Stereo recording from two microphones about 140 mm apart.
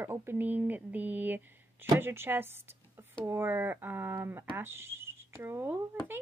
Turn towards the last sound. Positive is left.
turn(degrees=-15)  # may be behind; listen again after turning